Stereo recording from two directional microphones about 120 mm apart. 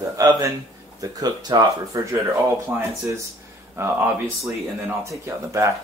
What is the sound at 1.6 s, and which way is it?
Speech, 25° right (ahead or behind).